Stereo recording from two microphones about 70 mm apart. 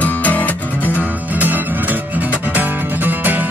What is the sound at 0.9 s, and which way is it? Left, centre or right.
Music, right.